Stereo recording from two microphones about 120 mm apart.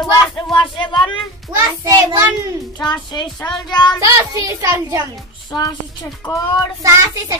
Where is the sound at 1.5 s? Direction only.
25° right (ahead or behind).